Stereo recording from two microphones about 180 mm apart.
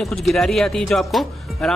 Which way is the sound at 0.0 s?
Centre (ahead or behind).